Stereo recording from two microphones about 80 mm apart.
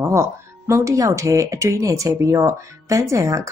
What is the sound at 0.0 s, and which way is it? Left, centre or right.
Speech, right.